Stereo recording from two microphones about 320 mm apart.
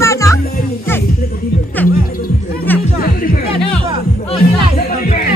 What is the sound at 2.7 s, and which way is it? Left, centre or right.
Music, centre.